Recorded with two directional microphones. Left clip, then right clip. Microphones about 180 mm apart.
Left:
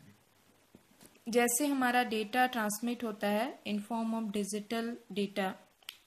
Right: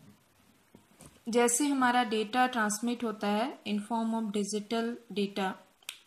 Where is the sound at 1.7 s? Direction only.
20° left (ahead or behind).